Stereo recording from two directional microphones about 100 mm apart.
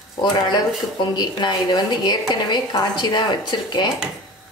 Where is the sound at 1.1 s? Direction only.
50° left (ahead or behind).